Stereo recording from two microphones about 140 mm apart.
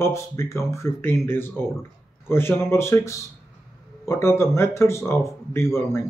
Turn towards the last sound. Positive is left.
turn(degrees=20)  # may be behind; listen again after turning